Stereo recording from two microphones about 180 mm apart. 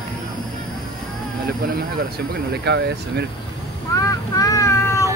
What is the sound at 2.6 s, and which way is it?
Speech, 70° right (ahead or behind).